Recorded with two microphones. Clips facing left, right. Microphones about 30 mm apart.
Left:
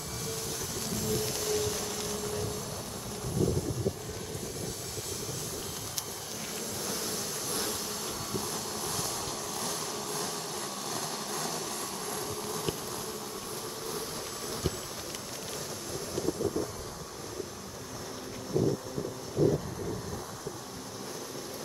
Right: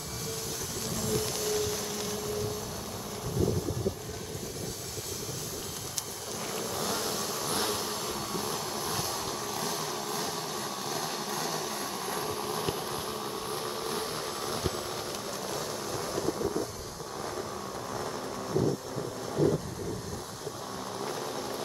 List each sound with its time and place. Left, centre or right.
0.3 s train: centre
7.5 s a sound: right
9.6 s vehicle: centre
12.1 s vehicle: right